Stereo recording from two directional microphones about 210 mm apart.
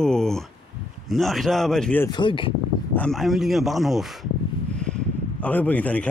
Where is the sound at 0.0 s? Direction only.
5° left (ahead or behind).